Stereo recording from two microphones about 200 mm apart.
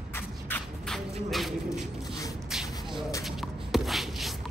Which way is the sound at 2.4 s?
Centre (ahead or behind).